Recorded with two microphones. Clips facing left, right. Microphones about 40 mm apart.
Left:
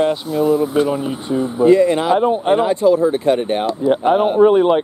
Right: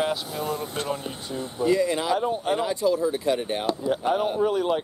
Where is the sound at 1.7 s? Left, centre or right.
Left.